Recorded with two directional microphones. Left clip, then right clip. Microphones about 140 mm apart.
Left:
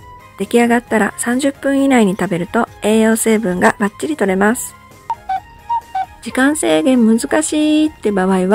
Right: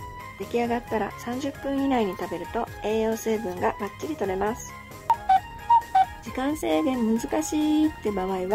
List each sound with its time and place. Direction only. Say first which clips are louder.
0.4 s speech: left 13 dB; 40° left (ahead or behind)
5.1 s music: even; centre (ahead or behind)
6.3 s speech: left 14 dB; 45° left (ahead or behind)